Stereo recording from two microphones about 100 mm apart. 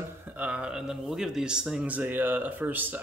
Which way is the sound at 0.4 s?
10° right (ahead or behind).